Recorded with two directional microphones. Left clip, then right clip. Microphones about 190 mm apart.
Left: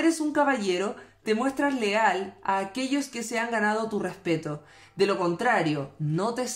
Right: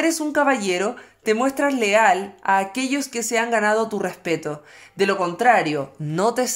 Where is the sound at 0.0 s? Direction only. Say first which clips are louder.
Right 4 dB; 45° right (ahead or behind).